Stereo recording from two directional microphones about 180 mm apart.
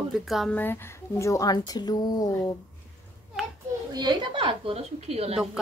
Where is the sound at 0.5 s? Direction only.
10° left (ahead or behind).